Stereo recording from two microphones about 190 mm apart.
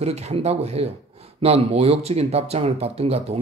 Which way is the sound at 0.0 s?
35° right (ahead or behind).